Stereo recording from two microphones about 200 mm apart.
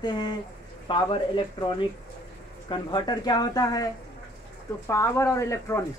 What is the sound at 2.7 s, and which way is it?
Speech, 20° left (ahead or behind).